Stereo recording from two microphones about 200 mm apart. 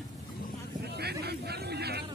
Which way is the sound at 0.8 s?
55° right (ahead or behind).